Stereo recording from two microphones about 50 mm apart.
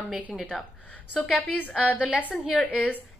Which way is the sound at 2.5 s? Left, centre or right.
Left.